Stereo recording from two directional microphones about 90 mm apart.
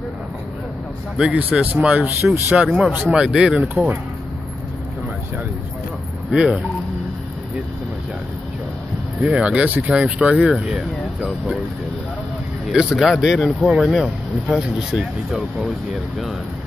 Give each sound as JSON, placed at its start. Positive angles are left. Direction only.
{"t": 1.1, "sound": "speech", "side_deg": -15}
{"t": 3.3, "sound": "speech", "side_deg": 0}
{"t": 3.6, "sound": "speech", "side_deg": -20}
{"t": 6.3, "sound": "speech", "side_deg": -10}
{"t": 9.2, "sound": "speech", "side_deg": -15}
{"t": 12.7, "sound": "speech", "side_deg": -10}